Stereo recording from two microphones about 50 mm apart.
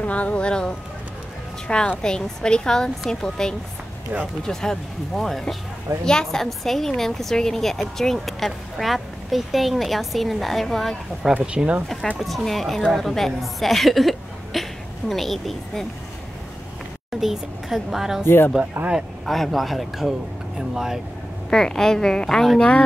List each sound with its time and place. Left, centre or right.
0.0 s a woman's voice: left; by 11.0 s centre
11.5 s speech: right
12.2 s a woman's voice: centre
17.2 s speech: centre
18.2 s speech: left
18.8 s speech: right
19.2 s speech: centre
21.5 s a woman's voice: centre